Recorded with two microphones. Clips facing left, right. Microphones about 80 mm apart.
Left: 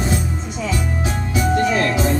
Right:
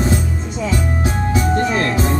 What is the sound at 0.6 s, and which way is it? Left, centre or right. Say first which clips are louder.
Music: right 3 dB; right.